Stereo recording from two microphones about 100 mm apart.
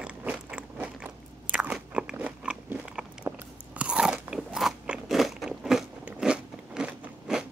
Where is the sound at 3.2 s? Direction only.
25° right (ahead or behind).